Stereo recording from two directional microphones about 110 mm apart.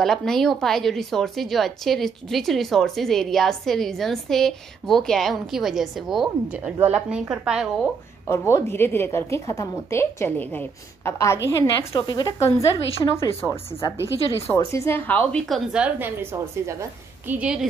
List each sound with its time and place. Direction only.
0.0 s a woman's voice: 5° left (ahead or behind)
8.3 s a woman's voice: 25° left (ahead or behind)
11.1 s a woman's voice: 30° left (ahead or behind)
14.5 s a woman's voice: 30° left (ahead or behind)
15.4 s a woman's voice: centre (ahead or behind)
15.8 s a woman's voice: 20° right (ahead or behind)
17.3 s speech: 10° right (ahead or behind)